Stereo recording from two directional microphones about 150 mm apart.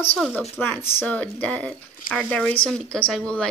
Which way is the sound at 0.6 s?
15° left (ahead or behind).